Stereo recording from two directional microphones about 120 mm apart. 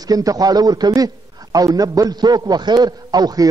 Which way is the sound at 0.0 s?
30° right (ahead or behind).